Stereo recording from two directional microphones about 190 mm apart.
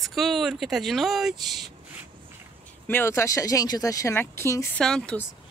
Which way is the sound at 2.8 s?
10° left (ahead or behind).